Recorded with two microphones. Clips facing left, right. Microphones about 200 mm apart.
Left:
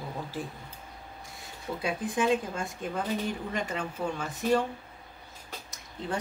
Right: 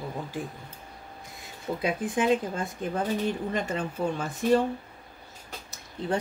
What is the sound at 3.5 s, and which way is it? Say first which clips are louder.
Speech: right 3 dB; 50° right (ahead or behind).